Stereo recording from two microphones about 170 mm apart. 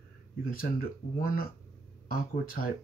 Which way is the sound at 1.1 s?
60° left (ahead or behind).